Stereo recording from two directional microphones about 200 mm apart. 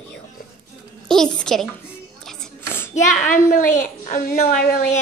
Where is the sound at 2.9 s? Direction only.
40° left (ahead or behind).